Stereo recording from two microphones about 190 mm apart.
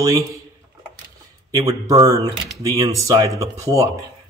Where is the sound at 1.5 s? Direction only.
15° right (ahead or behind).